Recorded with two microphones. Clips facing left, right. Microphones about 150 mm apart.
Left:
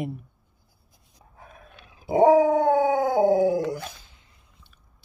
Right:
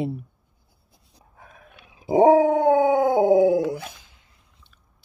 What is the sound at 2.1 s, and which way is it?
Dog, 30° right (ahead or behind).